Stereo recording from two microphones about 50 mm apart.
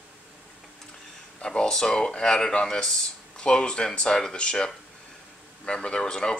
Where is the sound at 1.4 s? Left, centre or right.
Centre.